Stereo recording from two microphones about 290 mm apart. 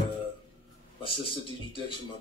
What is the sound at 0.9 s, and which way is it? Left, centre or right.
Speech, centre.